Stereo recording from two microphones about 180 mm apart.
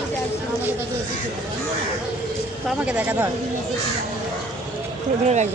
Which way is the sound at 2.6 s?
5° right (ahead or behind).